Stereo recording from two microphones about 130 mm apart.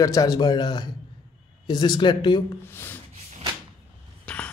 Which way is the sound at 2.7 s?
15° left (ahead or behind).